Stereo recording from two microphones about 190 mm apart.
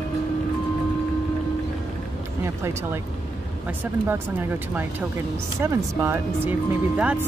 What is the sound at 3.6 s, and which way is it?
Speech, 10° right (ahead or behind).